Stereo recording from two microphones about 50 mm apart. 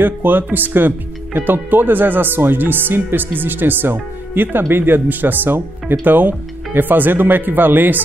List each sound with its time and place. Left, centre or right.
0.0 s speech: right